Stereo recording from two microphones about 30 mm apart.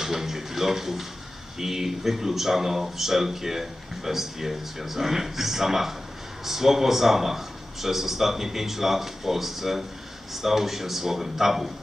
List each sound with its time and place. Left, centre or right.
0.0 s speech: centre